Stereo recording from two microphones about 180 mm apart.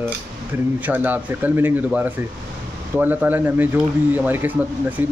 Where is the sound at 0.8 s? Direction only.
10° right (ahead or behind).